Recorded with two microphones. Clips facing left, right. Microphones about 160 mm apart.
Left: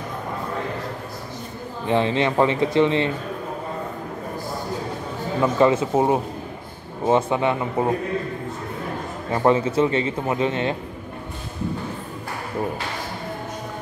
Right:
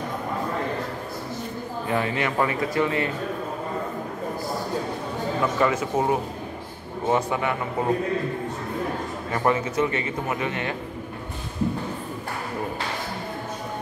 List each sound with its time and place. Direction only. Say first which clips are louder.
1.9 s speech: left 5 dB; 25° left (ahead or behind)
5.4 s speech: left 6 dB; 25° left (ahead or behind)
9.3 s speech: left 5 dB; 25° left (ahead or behind)